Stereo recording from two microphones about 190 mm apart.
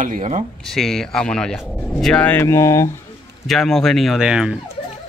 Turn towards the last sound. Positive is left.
turn(degrees=-5)  # may be behind; listen again after turning